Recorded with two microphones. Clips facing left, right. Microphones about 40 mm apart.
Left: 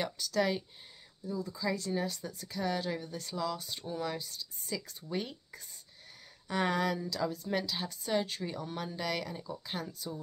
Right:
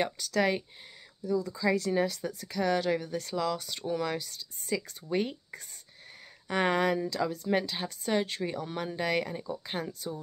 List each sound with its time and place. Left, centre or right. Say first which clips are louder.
0.0 s a woman's voice: right 4 dB; right